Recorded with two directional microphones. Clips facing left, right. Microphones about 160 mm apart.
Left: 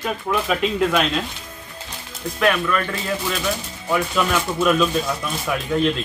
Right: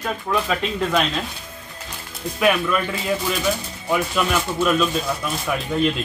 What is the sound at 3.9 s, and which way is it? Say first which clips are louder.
Speech: left 1 dB; centre (ahead or behind).